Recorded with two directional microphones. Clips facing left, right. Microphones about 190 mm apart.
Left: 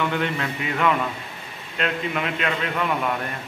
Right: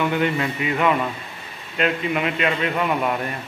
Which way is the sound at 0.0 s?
10° right (ahead or behind).